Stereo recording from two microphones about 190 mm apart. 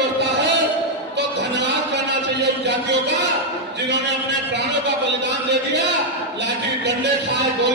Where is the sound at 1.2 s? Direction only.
65° right (ahead or behind).